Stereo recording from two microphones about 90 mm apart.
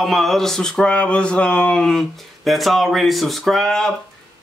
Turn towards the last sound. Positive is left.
turn(degrees=5)  # may be behind; listen again after turning